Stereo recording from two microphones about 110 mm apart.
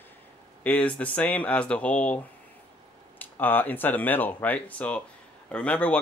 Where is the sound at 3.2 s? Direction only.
15° left (ahead or behind).